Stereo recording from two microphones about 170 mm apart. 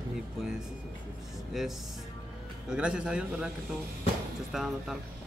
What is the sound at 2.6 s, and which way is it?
Speech, 5° right (ahead or behind).